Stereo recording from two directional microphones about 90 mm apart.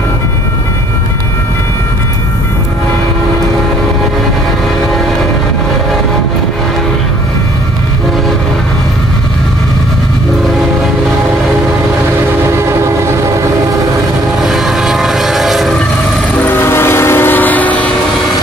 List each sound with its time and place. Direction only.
12.5 s train: 30° right (ahead or behind)
14.4 s vehicle: centre (ahead or behind)
16.3 s train: 25° left (ahead or behind)